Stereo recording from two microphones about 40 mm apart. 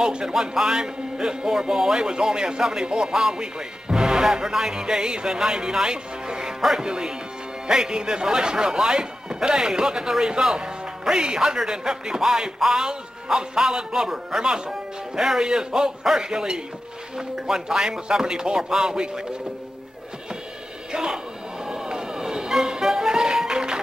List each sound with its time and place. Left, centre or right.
0.0 s speech: centre
20.9 s speech: centre
21.6 s music: centre